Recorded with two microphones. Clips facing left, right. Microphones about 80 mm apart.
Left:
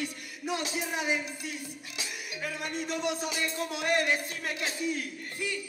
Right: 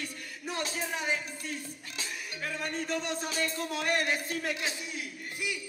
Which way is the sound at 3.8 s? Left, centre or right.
Left.